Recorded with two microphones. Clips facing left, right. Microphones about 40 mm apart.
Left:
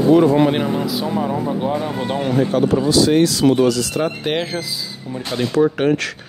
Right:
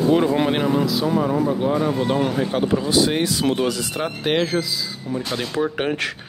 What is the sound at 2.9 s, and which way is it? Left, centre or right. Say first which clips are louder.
Speech: left 6 dB; right.